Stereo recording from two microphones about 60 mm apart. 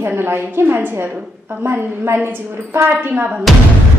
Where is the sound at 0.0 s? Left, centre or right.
Right.